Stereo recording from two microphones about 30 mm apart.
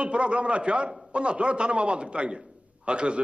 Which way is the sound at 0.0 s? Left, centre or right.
Right.